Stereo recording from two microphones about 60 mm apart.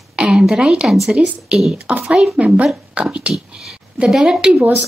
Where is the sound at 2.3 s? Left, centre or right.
Right.